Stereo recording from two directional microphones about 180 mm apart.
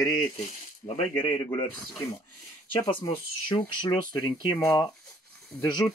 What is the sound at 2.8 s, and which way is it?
Speech, 20° left (ahead or behind).